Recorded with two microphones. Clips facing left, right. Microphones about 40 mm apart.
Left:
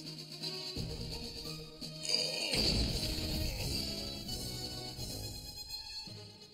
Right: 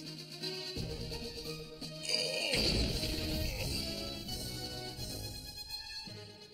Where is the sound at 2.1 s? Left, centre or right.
Centre.